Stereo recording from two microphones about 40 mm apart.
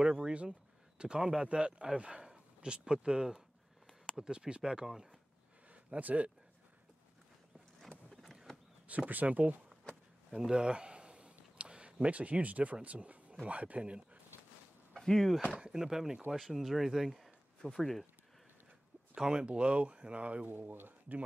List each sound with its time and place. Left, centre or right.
0.0 s speech: right
5.9 s speech: right
8.8 s speech: right
10.3 s a sound: right
12.8 s speech: right
15.0 s speech: centre
15.7 s speech: centre
19.2 s speech: right
20.4 s speech: right